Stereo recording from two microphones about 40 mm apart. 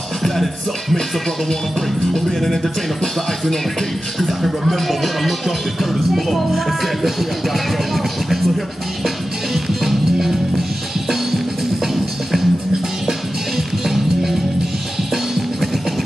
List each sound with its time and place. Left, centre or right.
0.2 s music: centre
2.1 s speech: centre
9.0 s music: centre
11.9 s music: centre
13.6 s music: centre